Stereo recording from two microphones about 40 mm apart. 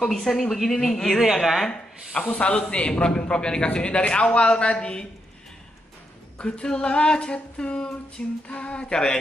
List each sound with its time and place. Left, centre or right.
0.1 s speech: centre
1.2 s a woman's voice: centre
1.7 s a man's voice: left
6.3 s a man's voice: left